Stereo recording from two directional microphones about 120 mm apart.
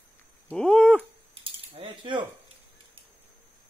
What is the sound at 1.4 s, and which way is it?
Mechanisms, 45° right (ahead or behind).